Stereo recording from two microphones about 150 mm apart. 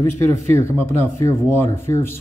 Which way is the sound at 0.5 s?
15° left (ahead or behind).